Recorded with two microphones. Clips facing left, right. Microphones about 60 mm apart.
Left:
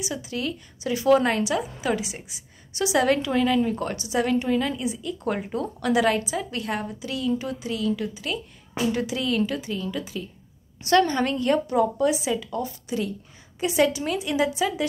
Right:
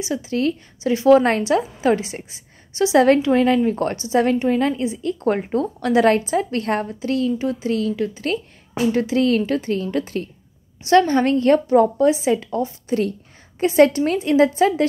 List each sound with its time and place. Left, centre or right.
0.0 s a woman's voice: right
7.2 s a woman's voice: right
10.8 s a woman's voice: right